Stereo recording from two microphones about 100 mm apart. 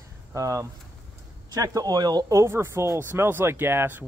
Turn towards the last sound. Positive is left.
turn(degrees=-20)  # may be behind; listen again after turning